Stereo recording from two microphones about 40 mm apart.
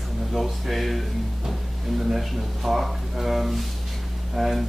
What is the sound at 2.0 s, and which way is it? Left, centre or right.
Speech, centre.